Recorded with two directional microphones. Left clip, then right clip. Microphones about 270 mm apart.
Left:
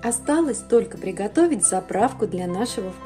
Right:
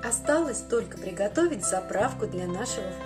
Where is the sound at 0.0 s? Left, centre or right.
Left.